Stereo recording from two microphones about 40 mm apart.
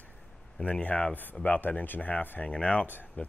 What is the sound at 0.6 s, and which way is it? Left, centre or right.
Speech, left.